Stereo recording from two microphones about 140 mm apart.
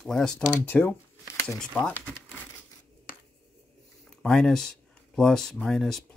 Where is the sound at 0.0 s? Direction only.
5° left (ahead or behind).